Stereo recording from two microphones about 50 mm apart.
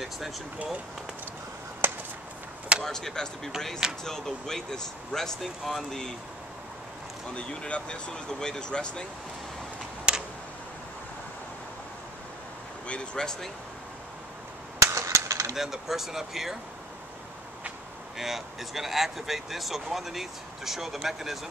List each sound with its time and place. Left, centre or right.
1.8 s a sound: right
2.8 s speech: centre
7.3 s speech: left
10.1 s a sound: centre
12.8 s speech: left
14.8 s cap gun: right
15.5 s speech: centre
18.1 s speech: centre